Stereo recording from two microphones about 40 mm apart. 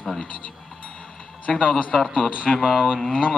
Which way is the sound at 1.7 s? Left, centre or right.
Left.